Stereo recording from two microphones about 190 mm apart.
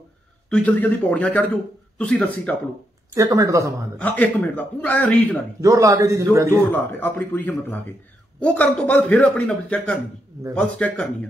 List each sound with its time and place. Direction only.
0.5 s a man's voice: 10° left (ahead or behind)
3.2 s speech: 15° right (ahead or behind)
4.0 s a man's voice: 5° left (ahead or behind)
5.6 s speech: 15° right (ahead or behind)
6.7 s a man's voice: 10° left (ahead or behind)